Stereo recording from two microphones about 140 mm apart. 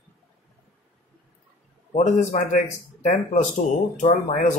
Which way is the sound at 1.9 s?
55° left (ahead or behind).